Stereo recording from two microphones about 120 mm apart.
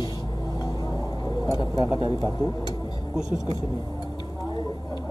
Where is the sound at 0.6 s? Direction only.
35° left (ahead or behind).